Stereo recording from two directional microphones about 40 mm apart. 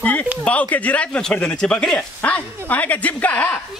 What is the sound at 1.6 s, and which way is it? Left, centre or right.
Speech, left.